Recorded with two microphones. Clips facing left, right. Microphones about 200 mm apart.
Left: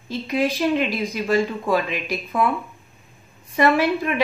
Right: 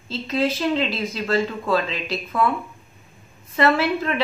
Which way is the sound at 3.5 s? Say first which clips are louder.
Left 1 dB; 15° left (ahead or behind).